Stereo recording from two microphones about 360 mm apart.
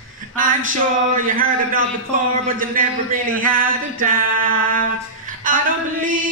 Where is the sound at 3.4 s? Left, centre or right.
Right.